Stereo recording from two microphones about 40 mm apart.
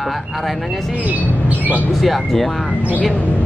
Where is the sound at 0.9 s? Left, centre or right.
Right.